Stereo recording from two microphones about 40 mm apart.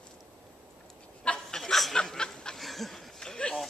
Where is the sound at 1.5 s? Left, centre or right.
Centre.